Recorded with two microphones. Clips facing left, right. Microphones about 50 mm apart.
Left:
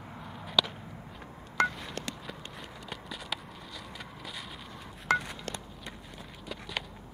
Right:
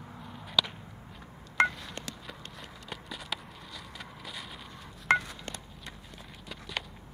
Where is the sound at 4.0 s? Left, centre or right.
Centre.